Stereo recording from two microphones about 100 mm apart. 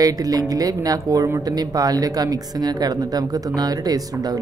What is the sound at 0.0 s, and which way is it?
Speech, 40° right (ahead or behind).